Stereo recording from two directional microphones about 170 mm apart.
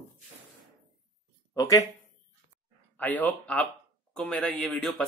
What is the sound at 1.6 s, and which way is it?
Speech, 20° left (ahead or behind).